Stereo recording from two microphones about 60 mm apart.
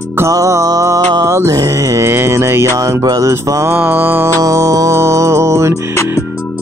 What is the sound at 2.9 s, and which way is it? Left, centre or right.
Mantra, right.